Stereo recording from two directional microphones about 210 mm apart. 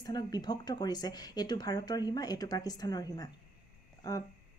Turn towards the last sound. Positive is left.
turn(degrees=15)  # may be behind; listen again after turning